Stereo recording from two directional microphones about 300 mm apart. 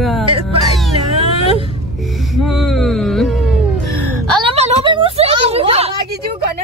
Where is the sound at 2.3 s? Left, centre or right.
Centre.